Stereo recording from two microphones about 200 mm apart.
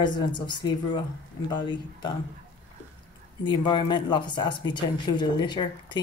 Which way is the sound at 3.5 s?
25° left (ahead or behind).